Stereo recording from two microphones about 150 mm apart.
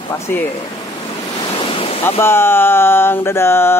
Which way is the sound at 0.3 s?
10° left (ahead or behind).